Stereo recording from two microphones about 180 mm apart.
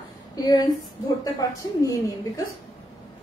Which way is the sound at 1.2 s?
20° left (ahead or behind).